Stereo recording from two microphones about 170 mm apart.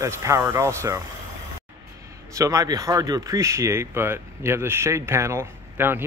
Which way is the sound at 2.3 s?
20° right (ahead or behind).